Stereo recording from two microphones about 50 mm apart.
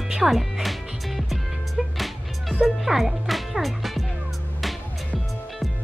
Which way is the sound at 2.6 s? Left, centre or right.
Centre.